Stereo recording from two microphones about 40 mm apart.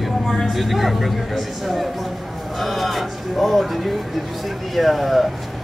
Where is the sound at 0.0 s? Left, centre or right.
Centre.